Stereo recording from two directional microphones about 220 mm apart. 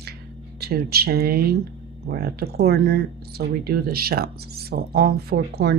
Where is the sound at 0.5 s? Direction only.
45° right (ahead or behind).